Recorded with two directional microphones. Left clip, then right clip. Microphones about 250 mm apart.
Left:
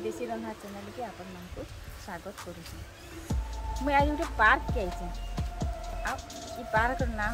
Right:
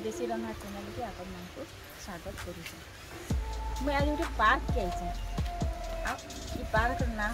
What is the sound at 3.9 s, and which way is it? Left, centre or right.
Speech, centre.